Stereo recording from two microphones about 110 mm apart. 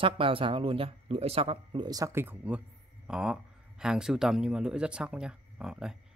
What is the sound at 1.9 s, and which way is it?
Speech, 30° right (ahead or behind).